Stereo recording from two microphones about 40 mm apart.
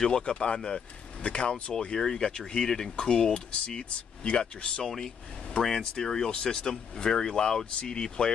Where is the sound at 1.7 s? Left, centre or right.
Centre.